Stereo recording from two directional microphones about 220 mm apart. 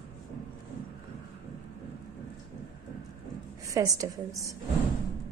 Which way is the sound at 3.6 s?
15° right (ahead or behind).